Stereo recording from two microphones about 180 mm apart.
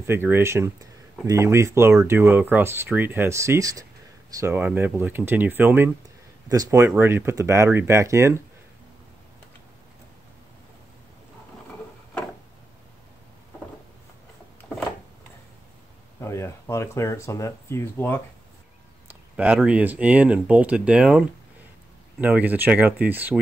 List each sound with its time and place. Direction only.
0.0 s speech: 10° right (ahead or behind)
14.6 s a sound: 10° left (ahead or behind)
16.2 s speech: 15° left (ahead or behind)
19.3 s speech: 5° right (ahead or behind)